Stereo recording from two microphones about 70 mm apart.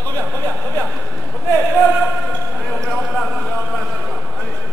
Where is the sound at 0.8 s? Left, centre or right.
Centre.